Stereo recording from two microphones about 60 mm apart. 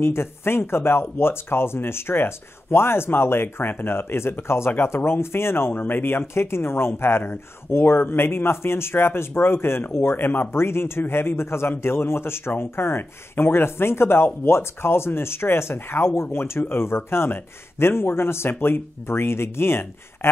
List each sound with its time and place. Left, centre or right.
0.0 s speech: left
10.5 s speech: left